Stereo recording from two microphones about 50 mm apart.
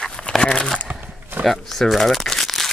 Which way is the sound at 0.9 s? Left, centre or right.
Right.